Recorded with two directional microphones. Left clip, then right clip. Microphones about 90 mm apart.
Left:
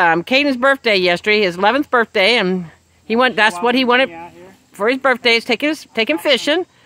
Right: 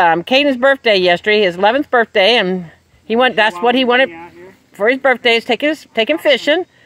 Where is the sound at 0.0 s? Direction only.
25° left (ahead or behind).